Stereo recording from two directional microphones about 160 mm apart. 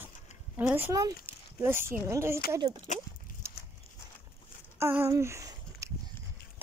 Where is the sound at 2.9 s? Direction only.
50° left (ahead or behind).